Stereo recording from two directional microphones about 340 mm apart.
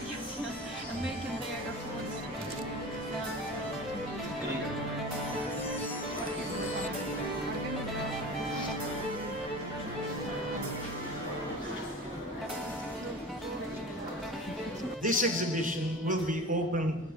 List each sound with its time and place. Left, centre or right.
15.0 s music: right